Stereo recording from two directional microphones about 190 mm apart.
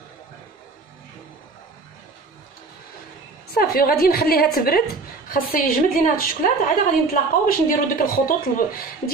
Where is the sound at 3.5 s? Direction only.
50° left (ahead or behind).